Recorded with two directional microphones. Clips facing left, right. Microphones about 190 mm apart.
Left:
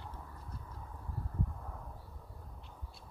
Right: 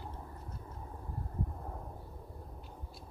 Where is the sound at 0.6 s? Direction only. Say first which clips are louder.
Right 3 dB; 30° right (ahead or behind).